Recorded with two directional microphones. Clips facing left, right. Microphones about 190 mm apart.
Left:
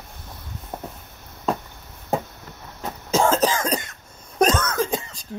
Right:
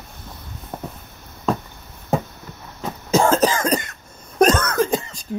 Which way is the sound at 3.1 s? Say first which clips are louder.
Right 3 dB; 10° right (ahead or behind).